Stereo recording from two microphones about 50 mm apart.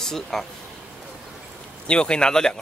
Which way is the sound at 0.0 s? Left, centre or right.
Centre.